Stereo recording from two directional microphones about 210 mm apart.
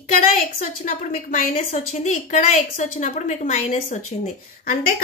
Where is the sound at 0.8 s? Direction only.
35° left (ahead or behind).